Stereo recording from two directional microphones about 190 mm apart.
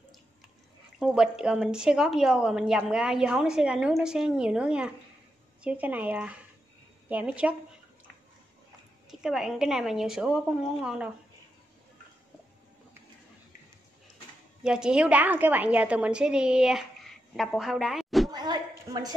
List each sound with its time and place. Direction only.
0.9 s a woman's voice: centre (ahead or behind)
9.1 s a woman's voice: centre (ahead or behind)
14.6 s a woman's voice: 5° right (ahead or behind)
18.3 s a sound: 20° right (ahead or behind)